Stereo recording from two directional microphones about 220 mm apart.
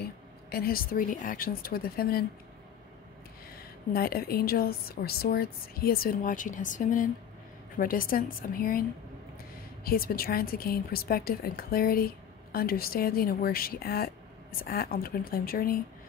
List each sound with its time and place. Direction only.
0.0 s speech: 45° left (ahead or behind)
3.9 s a woman's voice: 45° left (ahead or behind)
9.8 s a woman's voice: 40° left (ahead or behind)